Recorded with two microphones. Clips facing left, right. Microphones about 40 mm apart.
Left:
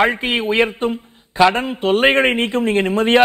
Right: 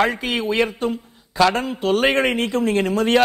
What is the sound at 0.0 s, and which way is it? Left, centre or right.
A man's voice, left.